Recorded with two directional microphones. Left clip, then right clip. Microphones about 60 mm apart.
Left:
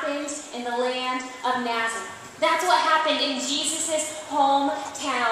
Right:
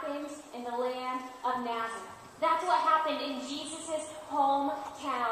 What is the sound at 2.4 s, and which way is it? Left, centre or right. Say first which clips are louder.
Speech: left 7 dB; left.